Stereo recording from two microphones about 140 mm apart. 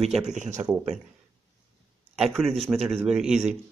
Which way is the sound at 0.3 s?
60° right (ahead or behind).